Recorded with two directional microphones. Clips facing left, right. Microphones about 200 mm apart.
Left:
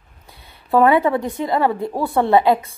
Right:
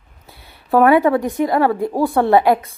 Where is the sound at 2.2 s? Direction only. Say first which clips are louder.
Even; 20° left (ahead or behind).